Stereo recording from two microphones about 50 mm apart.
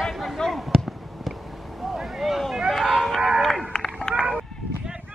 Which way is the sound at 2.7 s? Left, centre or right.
Centre.